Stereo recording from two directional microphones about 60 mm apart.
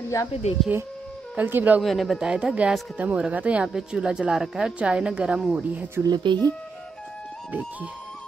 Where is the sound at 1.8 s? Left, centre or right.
Centre.